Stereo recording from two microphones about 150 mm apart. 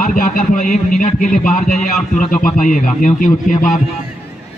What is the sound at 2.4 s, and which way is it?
A man's voice, 60° left (ahead or behind).